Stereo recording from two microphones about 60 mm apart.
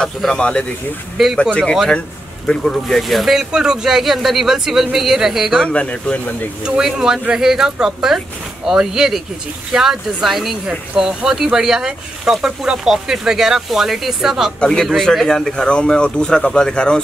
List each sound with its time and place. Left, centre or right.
0.0 s speech: centre
1.1 s speech: centre
1.4 s speech: centre
2.4 s speech: centre
5.6 s speech: centre
6.6 s speech: centre
14.6 s speech: centre